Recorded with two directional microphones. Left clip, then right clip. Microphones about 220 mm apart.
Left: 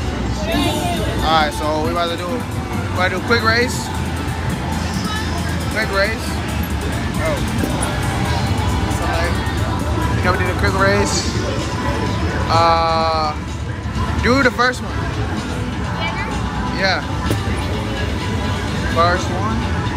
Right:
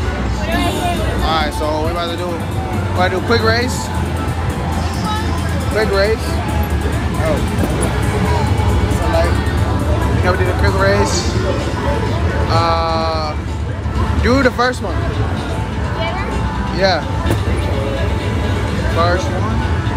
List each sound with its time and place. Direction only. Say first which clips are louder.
1.2 s speech: left 2 dB; centre (ahead or behind)
5.8 s speech: right 4 dB; 20° right (ahead or behind)
10.2 s speech: right 1 dB; 10° right (ahead or behind)
12.4 s speech: left 2 dB; 10° right (ahead or behind)
18.9 s speech: left 1 dB; 10° right (ahead or behind)